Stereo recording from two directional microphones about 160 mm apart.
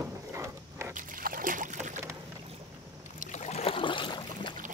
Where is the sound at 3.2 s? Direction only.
45° left (ahead or behind); by 4.5 s 30° left (ahead or behind).